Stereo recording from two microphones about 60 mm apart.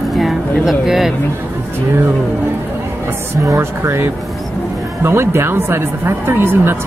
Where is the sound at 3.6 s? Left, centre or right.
Right.